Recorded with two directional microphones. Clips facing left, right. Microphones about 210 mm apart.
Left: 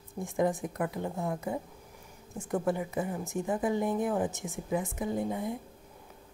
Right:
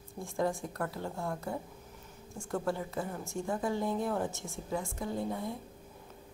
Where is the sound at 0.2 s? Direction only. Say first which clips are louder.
Left 4 dB; 20° left (ahead or behind).